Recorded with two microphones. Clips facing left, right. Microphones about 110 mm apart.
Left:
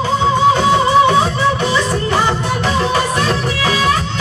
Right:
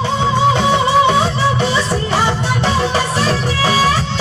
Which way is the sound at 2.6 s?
30° right (ahead or behind).